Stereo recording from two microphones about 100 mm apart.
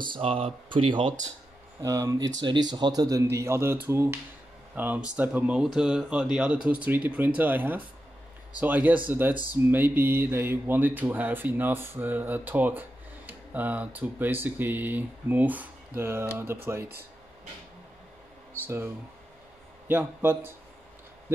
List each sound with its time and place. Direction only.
0.1 s speech: 70° right (ahead or behind)
1.8 s a man's voice: 35° right (ahead or behind)
2.1 s a man's voice: 50° right (ahead or behind); by 16.9 s 25° right (ahead or behind)
19.9 s speech: 20° right (ahead or behind)